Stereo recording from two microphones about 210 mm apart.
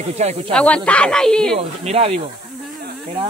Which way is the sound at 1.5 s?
30° right (ahead or behind).